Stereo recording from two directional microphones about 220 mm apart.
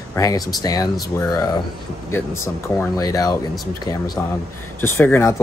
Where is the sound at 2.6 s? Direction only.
15° left (ahead or behind).